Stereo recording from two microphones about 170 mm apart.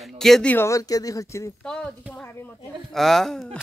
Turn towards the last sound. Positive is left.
turn(degrees=0)  # may be behind; listen again after turning